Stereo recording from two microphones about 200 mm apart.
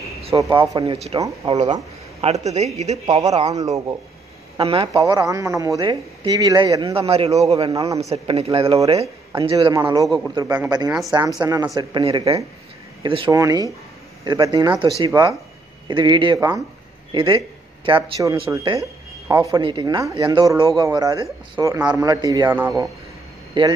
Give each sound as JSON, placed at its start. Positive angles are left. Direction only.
{"t": 0.4, "sound": "speech", "side_deg": -20}
{"t": 1.2, "sound": "speech", "side_deg": -20}
{"t": 2.4, "sound": "speech", "side_deg": -35}
{"t": 3.2, "sound": "a woman's voice", "side_deg": -20}
{"t": 7.7, "sound": "a woman's voice", "side_deg": -15}
{"t": 8.1, "sound": "a woman's voice", "side_deg": -30}
{"t": 12.0, "sound": "a woman's voice", "side_deg": -30}
{"t": 23.6, "sound": "speech", "side_deg": -25}